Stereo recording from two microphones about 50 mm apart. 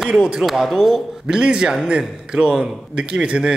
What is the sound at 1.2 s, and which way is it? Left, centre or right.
A man's voice, centre.